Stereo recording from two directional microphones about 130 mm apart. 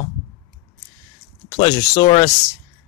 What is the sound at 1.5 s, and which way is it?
Speech, 30° left (ahead or behind).